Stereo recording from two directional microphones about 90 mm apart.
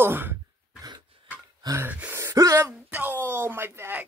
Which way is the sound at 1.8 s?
20° right (ahead or behind).